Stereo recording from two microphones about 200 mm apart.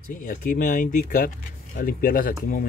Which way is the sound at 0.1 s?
40° left (ahead or behind).